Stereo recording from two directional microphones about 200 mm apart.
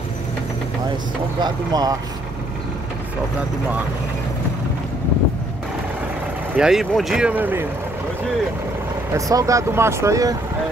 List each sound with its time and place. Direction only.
1.4 s speech: 20° right (ahead or behind)
6.5 s speech: 5° right (ahead or behind)
9.1 s speech: 15° right (ahead or behind)